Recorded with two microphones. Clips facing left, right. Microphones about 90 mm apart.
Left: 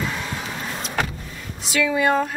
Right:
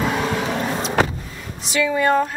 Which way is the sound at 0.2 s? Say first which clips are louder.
Right 8 dB; 70° right (ahead or behind).